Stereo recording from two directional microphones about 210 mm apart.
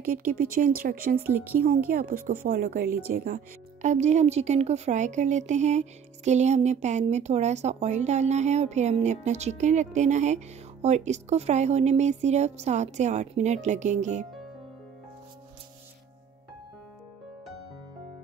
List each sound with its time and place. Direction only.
0.0 s speech: 45° right (ahead or behind)
1.2 s speech: 10° right (ahead or behind)
1.9 s speech: 45° right (ahead or behind)